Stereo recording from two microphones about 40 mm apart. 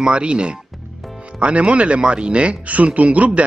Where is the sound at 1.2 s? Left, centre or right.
Right.